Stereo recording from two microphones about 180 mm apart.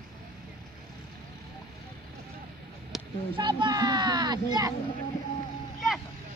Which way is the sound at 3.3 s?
25° right (ahead or behind).